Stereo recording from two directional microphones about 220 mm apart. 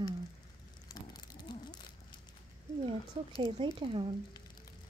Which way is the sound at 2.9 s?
25° right (ahead or behind).